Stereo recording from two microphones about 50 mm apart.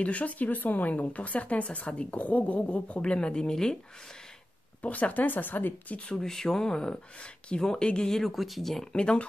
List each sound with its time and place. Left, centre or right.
0.0 s speech: left
4.8 s speech: left
6.1 s speech: centre
8.9 s speech: centre